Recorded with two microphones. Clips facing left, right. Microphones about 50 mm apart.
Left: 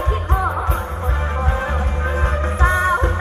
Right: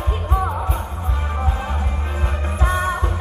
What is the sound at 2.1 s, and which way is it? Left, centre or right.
Music, left.